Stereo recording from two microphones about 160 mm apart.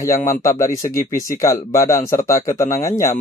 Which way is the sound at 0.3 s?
20° left (ahead or behind).